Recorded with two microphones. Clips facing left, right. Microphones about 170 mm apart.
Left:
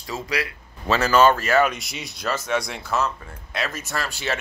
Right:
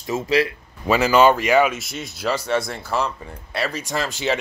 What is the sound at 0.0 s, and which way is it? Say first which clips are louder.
Speech: right 8 dB; 25° right (ahead or behind).